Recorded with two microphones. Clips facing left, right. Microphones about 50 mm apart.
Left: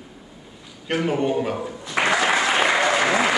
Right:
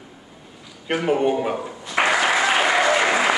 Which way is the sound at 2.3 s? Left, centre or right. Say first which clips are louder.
Right 1 dB; centre.